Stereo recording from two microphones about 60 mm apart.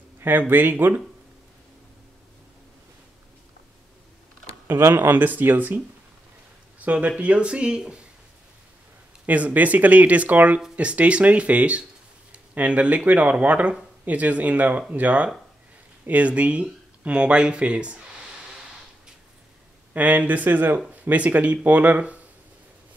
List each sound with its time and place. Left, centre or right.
0.2 s speech: right
4.6 s speech: right
6.8 s speech: right
9.2 s speech: right
19.9 s speech: right